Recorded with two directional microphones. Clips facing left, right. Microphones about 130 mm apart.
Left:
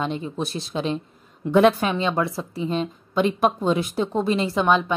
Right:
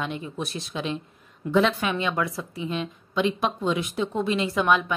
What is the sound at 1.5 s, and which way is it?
Speech, 55° left (ahead or behind).